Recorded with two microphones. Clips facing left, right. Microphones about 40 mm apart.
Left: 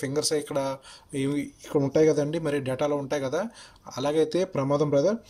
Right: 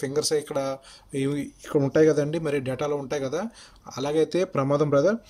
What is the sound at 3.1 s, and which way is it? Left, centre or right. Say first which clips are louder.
Speech: even; centre.